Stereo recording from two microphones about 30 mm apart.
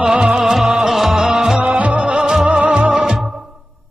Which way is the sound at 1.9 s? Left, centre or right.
Right.